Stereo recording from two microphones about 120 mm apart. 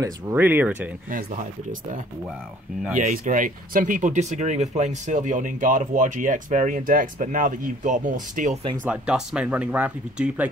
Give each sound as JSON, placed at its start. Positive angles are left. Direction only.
{"t": 0.0, "sound": "speech", "side_deg": -15}
{"t": 1.1, "sound": "speech", "side_deg": -90}
{"t": 3.0, "sound": "speech", "side_deg": -90}
{"t": 8.8, "sound": "speech", "side_deg": -10}